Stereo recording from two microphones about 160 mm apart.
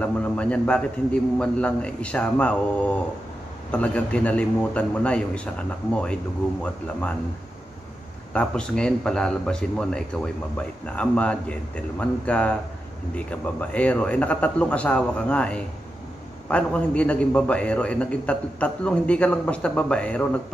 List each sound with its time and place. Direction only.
0.0 s a man's voice: 5° left (ahead or behind)
6.6 s a man's voice: 5° left (ahead or behind)
8.3 s a man's voice: 5° left (ahead or behind)